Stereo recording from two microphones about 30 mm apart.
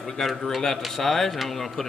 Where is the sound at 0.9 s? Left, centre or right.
Centre.